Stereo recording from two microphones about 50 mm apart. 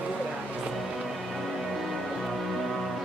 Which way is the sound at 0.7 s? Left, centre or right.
Centre.